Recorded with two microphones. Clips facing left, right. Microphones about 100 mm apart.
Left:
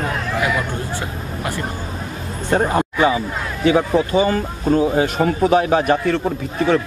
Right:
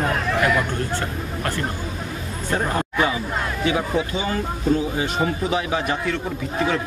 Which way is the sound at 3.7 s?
40° left (ahead or behind).